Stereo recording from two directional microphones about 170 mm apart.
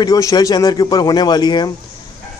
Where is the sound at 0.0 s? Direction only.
20° left (ahead or behind).